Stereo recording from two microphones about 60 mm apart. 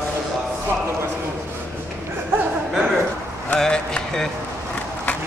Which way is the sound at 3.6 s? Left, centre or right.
Centre.